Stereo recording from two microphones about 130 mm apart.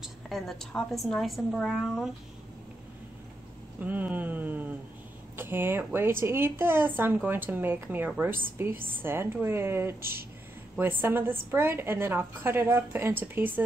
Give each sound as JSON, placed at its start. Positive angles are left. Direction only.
{"t": 0.0, "sound": "a woman's voice", "side_deg": 0}
{"t": 3.8, "sound": "a woman's voice", "side_deg": -15}